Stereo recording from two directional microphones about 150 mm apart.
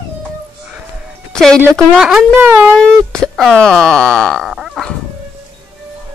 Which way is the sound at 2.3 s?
15° right (ahead or behind).